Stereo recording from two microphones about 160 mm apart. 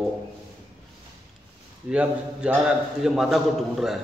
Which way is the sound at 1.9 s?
5° right (ahead or behind).